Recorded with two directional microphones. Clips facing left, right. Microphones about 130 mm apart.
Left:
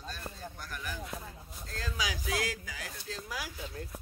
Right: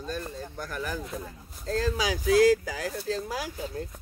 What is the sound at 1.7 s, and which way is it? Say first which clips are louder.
Speech: right 11 dB; 35° right (ahead or behind).